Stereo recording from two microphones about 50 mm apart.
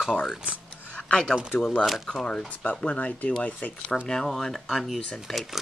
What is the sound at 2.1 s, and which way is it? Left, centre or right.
Speech, centre.